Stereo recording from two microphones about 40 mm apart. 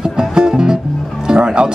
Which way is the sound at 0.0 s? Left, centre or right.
Centre.